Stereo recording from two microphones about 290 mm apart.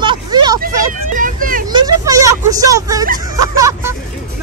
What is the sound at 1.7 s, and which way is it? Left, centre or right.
Speech, centre.